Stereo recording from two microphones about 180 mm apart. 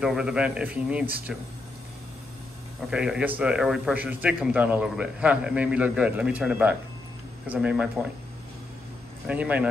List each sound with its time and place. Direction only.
0.0 s speech: 5° right (ahead or behind)
2.9 s a man's voice: 5° right (ahead or behind)
9.3 s a man's voice: 5° right (ahead or behind)